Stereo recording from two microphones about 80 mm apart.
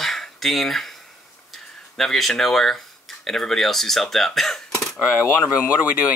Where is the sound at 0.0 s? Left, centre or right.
Centre.